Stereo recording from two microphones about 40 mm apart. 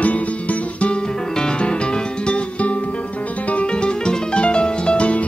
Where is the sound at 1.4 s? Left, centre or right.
Left.